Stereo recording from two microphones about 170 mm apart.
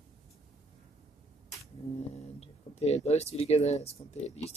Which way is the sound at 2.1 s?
40° left (ahead or behind).